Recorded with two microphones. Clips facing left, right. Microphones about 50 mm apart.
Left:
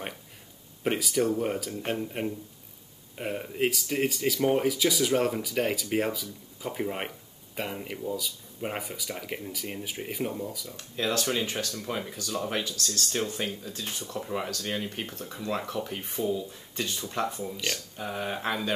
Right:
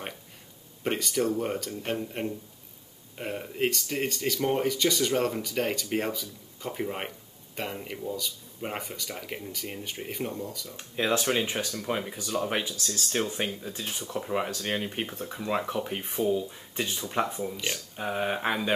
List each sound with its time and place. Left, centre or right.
0.8 s speech: centre
10.8 s speech: right